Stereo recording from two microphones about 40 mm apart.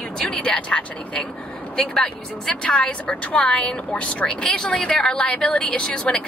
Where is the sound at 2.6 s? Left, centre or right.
Left.